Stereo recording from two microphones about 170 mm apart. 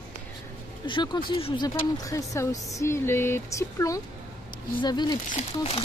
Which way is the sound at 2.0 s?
20° left (ahead or behind).